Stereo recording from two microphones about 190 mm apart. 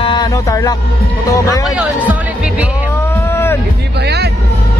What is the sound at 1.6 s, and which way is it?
Speech, 5° right (ahead or behind).